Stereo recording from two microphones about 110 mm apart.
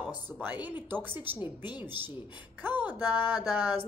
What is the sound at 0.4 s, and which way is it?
A woman's voice, 15° right (ahead or behind).